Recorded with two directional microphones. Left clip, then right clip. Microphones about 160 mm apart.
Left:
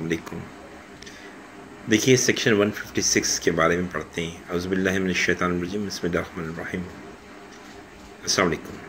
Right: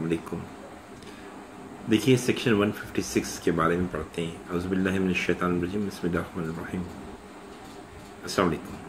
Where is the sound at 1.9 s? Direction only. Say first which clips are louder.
Left 4 dB; 5° left (ahead or behind).